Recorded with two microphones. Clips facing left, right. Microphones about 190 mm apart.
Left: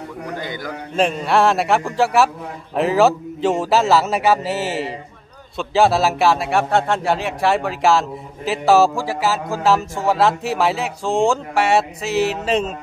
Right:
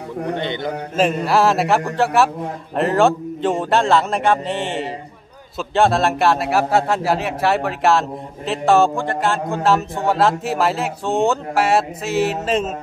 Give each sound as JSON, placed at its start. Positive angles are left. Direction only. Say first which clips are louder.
{"t": 0.2, "sound": "a man's voice", "louder": "right 6 dB", "side_deg": -25}
{"t": 1.2, "sound": "speech", "louder": "even", "side_deg": 0}